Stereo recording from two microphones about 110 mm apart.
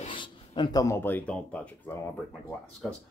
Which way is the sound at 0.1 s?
45° left (ahead or behind).